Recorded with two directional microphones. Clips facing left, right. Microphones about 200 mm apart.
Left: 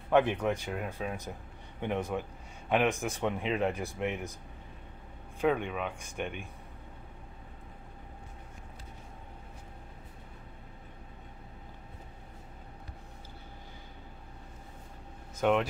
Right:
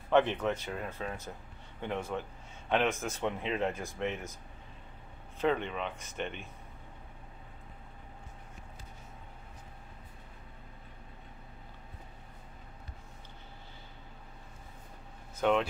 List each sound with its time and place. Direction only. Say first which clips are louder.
0.1 s speech: left 1 dB; 10° left (ahead or behind)
5.4 s speech: left 2 dB; 10° left (ahead or behind)
15.4 s speech: left 1 dB; 10° left (ahead or behind)